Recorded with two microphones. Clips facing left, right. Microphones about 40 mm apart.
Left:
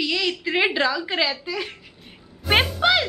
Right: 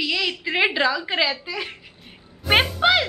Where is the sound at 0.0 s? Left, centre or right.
Centre.